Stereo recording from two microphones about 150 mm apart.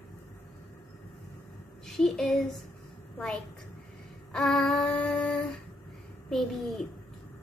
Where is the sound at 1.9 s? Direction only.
5° left (ahead or behind).